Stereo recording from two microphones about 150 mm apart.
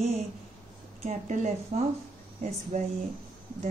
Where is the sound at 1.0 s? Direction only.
50° right (ahead or behind).